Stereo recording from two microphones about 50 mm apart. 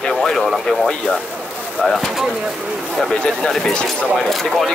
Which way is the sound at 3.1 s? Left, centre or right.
Left.